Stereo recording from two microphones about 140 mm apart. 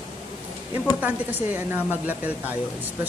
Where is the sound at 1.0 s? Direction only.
15° right (ahead or behind).